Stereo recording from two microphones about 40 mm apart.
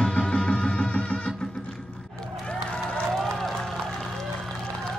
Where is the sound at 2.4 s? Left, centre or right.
Left.